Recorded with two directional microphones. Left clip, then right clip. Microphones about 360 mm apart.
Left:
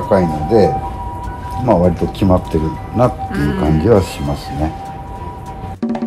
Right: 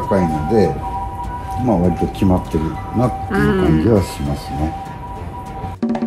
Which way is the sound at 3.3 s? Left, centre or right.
Centre.